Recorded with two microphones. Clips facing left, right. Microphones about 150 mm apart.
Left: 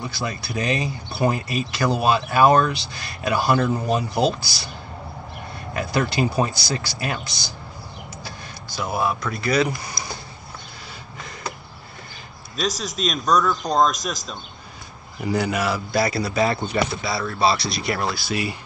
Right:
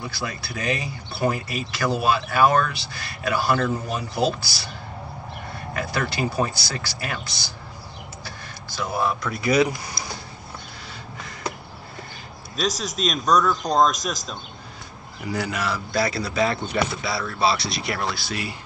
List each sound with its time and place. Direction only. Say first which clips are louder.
0.1 s speech: left 3 dB; 20° left (ahead or behind)
5.8 s speech: left 4 dB; 20° left (ahead or behind)
8.2 s a sound: left 2 dB; 15° left (ahead or behind)
9.2 s speech: left 1 dB; 5° right (ahead or behind)
12.5 s speech: even; centre (ahead or behind)
15.3 s speech: left 4 dB; 15° left (ahead or behind)
18.3 s speech: left 5 dB; 15° left (ahead or behind)